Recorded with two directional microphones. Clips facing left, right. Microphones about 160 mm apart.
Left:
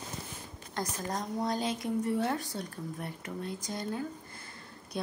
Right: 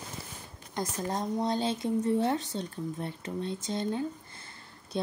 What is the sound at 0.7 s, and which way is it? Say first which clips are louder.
A woman's voice: right 3 dB; 25° right (ahead or behind).